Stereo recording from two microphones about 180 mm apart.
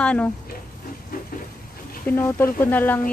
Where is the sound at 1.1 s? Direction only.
55° left (ahead or behind).